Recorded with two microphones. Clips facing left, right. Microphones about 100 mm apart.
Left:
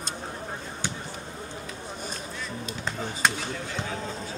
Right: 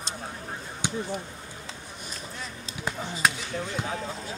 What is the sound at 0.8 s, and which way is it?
Basketball bounce, 15° right (ahead or behind).